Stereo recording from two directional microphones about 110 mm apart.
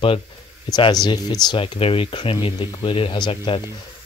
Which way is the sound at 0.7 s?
40° left (ahead or behind).